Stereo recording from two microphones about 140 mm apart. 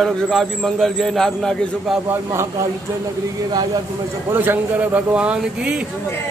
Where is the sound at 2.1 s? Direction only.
20° right (ahead or behind).